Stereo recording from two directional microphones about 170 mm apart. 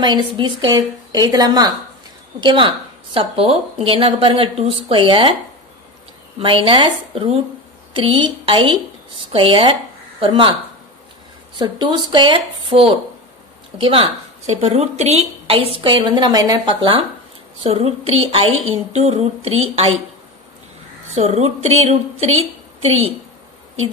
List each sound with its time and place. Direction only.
0.0 s a woman's voice: 25° right (ahead or behind)
6.4 s a woman's voice: 30° right (ahead or behind)
11.5 s a woman's voice: 25° right (ahead or behind)
21.1 s a woman's voice: 40° right (ahead or behind)